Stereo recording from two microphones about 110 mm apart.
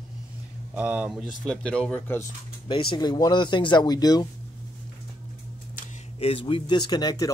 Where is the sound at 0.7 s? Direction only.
15° right (ahead or behind).